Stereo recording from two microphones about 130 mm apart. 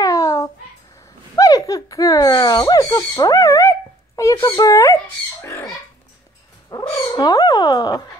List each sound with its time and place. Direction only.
0.0 s babbling: 25° left (ahead or behind)
1.3 s speech: 25° left (ahead or behind)
7.0 s speech: 30° left (ahead or behind)